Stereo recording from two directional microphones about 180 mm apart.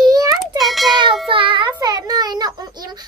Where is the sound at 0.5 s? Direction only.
Centre (ahead or behind).